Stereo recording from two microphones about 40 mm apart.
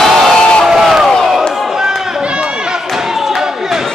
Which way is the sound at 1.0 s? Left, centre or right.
Centre.